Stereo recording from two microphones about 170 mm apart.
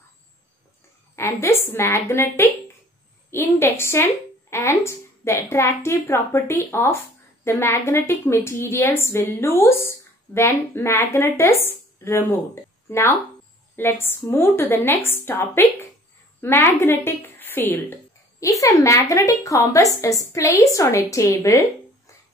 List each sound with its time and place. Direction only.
1.1 s a woman's voice: 15° left (ahead or behind)